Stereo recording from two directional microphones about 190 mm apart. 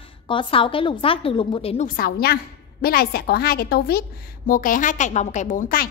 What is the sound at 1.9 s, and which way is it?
A woman's voice, 50° left (ahead or behind).